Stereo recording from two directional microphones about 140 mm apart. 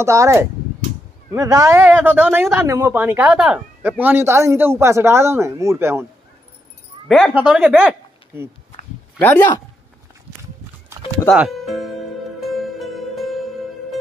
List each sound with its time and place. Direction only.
0.0 s speech: 20° right (ahead or behind)
7.1 s a man's voice: 10° left (ahead or behind)
7.3 s speech: 5° right (ahead or behind)
9.2 s a man's voice: 15° left (ahead or behind)
11.3 s speech: centre (ahead or behind)
12.4 s music: centre (ahead or behind)